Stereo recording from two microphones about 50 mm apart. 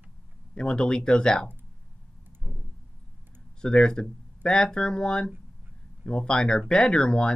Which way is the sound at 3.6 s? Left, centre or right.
Centre.